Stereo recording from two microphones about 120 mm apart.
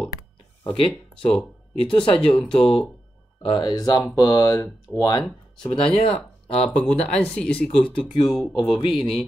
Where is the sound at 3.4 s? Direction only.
35° left (ahead or behind).